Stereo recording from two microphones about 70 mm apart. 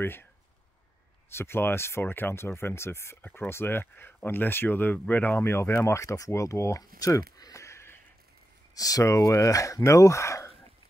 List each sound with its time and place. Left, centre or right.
0.0 s speech: left
1.3 s speech: left
5.4 s speech: left
5.9 s speech: left
6.8 s speech: left
7.6 s a sound: left
8.7 s speech: left